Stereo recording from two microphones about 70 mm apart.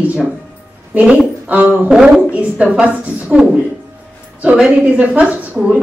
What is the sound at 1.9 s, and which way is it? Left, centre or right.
A woman's voice, centre.